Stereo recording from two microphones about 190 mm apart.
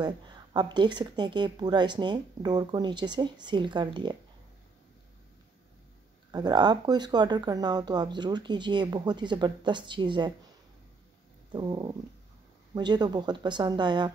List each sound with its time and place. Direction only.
0.0 s speech: 25° right (ahead or behind)
6.3 s speech: 20° right (ahead or behind)
11.5 s speech: 20° right (ahead or behind)